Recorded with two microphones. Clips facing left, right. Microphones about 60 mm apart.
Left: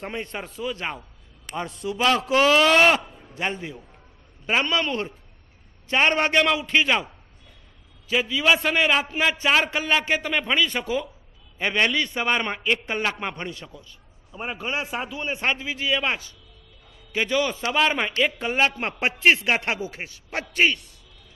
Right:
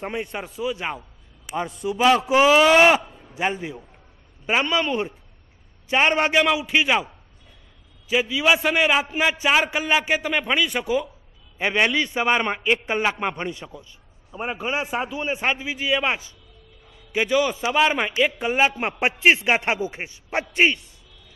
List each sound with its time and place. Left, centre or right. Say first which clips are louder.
0.0 s a man's voice: right 3 dB; centre
8.1 s a man's voice: right 1 dB; centre; by 20.8 s right